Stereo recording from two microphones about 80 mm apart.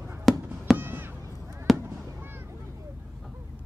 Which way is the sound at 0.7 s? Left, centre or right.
Right.